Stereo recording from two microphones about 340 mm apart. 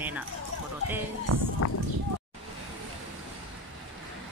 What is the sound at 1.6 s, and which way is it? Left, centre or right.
Speech, left.